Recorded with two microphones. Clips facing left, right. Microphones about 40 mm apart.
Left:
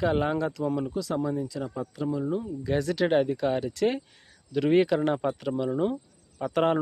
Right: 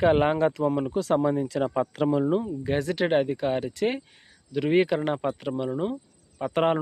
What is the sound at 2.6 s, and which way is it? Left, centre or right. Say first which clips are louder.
Speech: even; right.